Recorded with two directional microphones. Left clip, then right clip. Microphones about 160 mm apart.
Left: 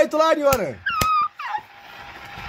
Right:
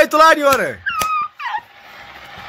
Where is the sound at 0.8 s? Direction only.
70° left (ahead or behind).